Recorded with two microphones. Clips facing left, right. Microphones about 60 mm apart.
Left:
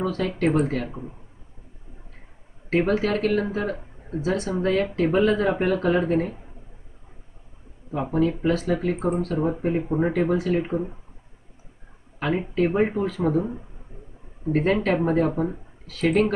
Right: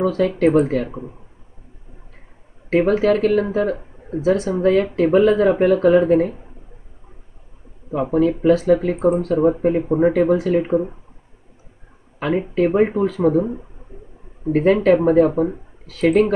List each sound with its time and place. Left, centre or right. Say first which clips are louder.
0.0 s speech: right 7 dB; centre
2.7 s speech: right 6 dB; centre
7.9 s speech: right 5 dB; centre
12.2 s speech: right 5 dB; centre